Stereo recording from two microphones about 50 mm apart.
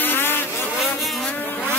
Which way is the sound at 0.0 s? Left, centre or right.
Left.